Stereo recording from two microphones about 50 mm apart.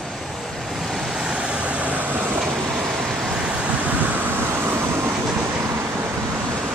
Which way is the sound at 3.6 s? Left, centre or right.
Right.